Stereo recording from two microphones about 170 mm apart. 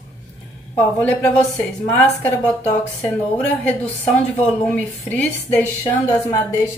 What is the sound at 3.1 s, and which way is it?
A woman's voice, 10° left (ahead or behind).